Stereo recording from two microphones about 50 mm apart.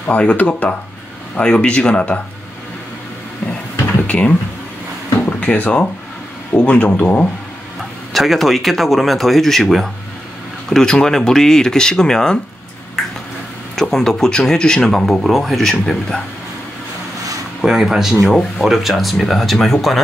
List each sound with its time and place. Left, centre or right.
0.1 s speech: left
4.1 s speech: left
5.4 s speech: left
8.1 s speech: centre
13.7 s speech: centre
17.6 s speech: centre